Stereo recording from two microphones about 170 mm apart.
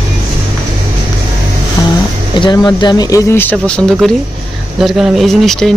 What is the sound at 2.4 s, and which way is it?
Speech, 25° left (ahead or behind).